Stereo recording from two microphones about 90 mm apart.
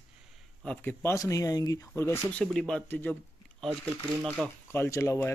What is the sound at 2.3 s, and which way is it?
Speech, 10° left (ahead or behind).